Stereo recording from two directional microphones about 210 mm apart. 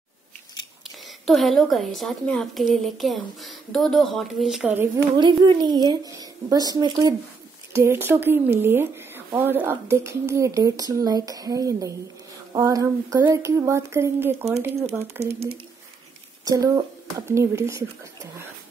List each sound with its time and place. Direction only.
1.0 s a woman's voice: centre (ahead or behind)
5.1 s a woman's voice: 20° right (ahead or behind)
16.4 s speech: 15° right (ahead or behind)